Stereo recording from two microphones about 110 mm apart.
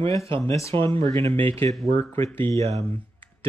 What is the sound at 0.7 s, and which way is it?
Speech, 55° right (ahead or behind).